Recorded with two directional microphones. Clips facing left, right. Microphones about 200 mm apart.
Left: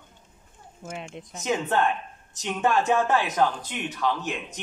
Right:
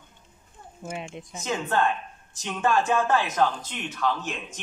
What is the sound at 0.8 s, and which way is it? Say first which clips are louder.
Speech: right 2 dB; 5° right (ahead or behind).